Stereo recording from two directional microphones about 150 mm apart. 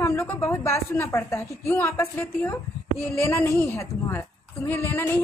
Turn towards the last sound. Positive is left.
turn(degrees=15)  # may be behind; listen again after turning